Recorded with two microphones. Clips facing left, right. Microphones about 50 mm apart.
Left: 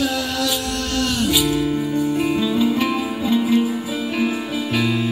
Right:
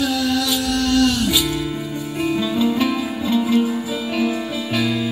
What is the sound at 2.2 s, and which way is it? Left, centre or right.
Music, centre.